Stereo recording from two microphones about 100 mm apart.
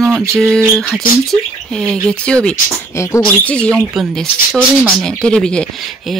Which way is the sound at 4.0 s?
5° right (ahead or behind).